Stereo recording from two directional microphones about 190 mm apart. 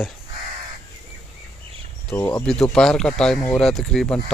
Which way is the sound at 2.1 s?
15° left (ahead or behind).